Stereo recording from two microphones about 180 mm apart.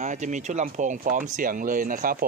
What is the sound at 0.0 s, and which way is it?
Speech, 40° right (ahead or behind).